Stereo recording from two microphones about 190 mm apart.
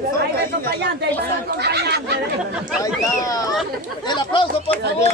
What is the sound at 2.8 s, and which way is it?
Speech, 15° left (ahead or behind).